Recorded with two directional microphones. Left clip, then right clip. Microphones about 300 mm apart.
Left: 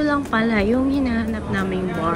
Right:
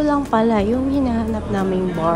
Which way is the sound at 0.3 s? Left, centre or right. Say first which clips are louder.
Right 2 dB; centre.